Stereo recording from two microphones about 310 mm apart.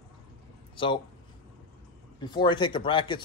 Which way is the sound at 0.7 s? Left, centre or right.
Centre.